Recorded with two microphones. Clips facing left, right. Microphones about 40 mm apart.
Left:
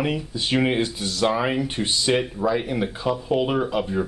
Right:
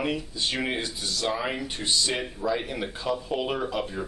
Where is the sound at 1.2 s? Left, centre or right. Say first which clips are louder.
Left 8 dB; left.